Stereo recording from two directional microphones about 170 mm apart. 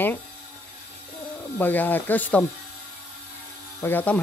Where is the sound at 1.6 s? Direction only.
10° left (ahead or behind).